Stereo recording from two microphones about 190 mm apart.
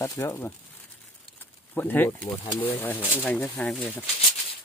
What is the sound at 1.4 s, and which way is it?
Bird, 10° left (ahead or behind).